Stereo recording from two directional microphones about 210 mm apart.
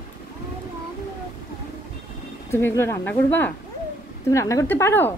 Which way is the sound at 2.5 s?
10° left (ahead or behind).